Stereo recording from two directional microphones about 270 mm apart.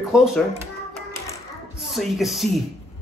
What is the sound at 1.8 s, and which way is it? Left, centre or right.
Speech, centre.